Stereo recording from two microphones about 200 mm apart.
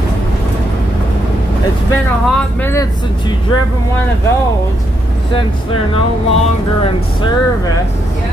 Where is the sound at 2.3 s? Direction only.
10° left (ahead or behind).